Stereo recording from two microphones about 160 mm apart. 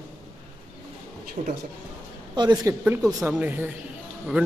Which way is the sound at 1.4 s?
50° right (ahead or behind).